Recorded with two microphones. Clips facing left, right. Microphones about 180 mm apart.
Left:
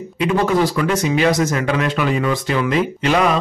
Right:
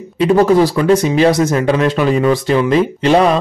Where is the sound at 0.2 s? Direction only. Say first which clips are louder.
Right 6 dB; 35° right (ahead or behind).